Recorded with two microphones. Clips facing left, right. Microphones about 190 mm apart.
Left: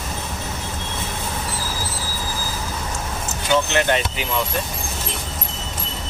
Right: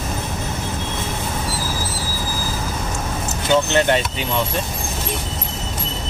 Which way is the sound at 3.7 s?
30° right (ahead or behind).